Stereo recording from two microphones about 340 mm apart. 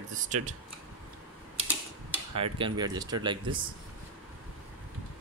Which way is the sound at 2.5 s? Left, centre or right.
Centre.